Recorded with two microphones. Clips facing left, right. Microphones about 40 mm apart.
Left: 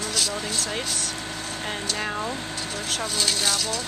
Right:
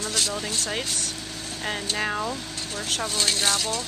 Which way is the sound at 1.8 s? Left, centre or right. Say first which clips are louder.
Right 2 dB; centre.